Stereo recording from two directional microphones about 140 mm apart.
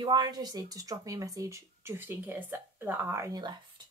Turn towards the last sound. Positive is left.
turn(degrees=-35)  # may be behind; listen again after turning